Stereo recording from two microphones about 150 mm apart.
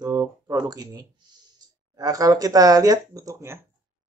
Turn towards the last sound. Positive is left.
turn(degrees=-20)  # may be behind; listen again after turning